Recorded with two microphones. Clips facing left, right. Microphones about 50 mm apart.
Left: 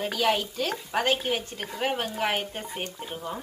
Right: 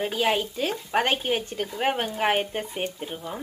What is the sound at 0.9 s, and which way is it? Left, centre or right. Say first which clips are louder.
Speech: right 2 dB; right.